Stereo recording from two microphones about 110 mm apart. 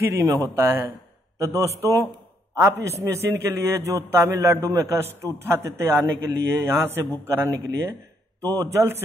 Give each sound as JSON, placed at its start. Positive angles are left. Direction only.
{"t": 0.3, "sound": "a man's voice", "side_deg": -25}